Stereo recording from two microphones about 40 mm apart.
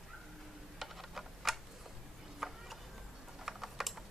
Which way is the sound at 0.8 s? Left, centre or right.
Centre.